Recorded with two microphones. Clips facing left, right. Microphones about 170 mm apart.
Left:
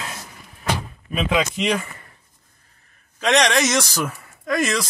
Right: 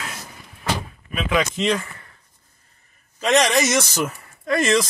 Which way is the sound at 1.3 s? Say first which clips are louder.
Right 1 dB; 15° left (ahead or behind).